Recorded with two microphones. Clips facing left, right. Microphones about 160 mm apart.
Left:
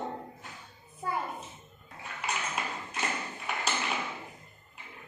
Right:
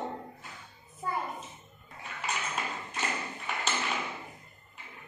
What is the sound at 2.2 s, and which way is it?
Tap, 5° left (ahead or behind).